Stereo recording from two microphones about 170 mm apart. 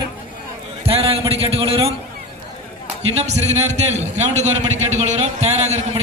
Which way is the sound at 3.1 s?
40° right (ahead or behind).